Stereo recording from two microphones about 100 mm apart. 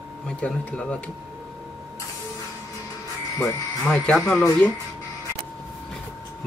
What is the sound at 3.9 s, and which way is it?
Speech, 5° left (ahead or behind).